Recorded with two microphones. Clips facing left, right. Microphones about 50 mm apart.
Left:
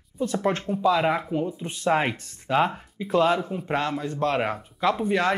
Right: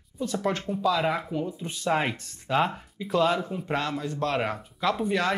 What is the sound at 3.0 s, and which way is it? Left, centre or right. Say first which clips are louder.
Speech: left 3 dB; left.